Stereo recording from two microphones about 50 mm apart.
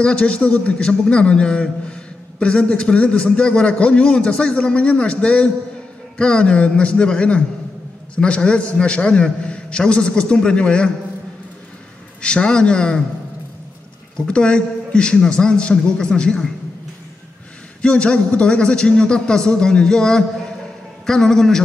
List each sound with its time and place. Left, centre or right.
0.0 s a man's voice: left
12.2 s a man's voice: centre
14.1 s a man's voice: centre
17.8 s a man's voice: left